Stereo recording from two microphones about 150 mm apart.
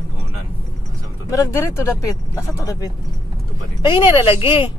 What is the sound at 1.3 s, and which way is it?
Speech, 20° left (ahead or behind).